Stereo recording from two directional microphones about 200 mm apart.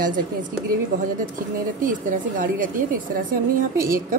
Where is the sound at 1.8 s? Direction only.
45° right (ahead or behind).